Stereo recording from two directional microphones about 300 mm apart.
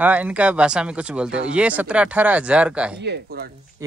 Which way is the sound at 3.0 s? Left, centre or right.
Right.